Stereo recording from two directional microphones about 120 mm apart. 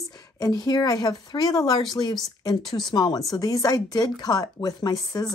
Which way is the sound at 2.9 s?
35° left (ahead or behind).